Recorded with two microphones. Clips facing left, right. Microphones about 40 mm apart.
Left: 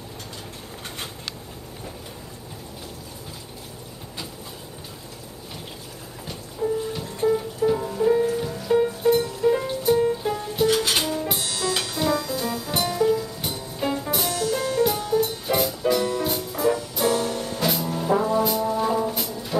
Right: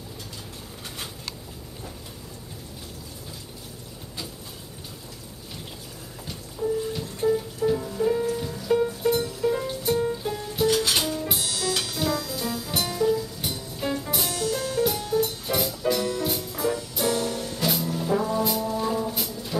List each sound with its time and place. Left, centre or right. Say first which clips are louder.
6.6 s music: left 1 dB; centre
10.7 s music: left 2 dB; left
11.2 s music: left 2 dB; centre
14.1 s music: left 3 dB; centre
19.1 s brass instrument: left 2 dB; centre